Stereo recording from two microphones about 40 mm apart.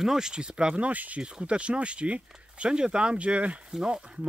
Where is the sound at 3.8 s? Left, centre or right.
Right.